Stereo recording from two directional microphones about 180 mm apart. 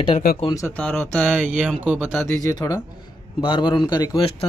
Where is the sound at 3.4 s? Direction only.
25° left (ahead or behind).